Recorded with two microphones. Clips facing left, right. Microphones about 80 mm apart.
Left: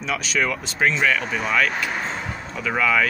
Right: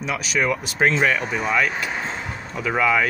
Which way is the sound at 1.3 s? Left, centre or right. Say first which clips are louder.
Even; centre.